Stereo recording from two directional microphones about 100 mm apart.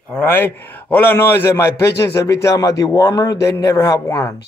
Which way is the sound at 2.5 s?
40° left (ahead or behind).